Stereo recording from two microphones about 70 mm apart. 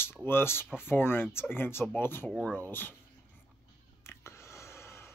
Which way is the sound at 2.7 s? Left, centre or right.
Left.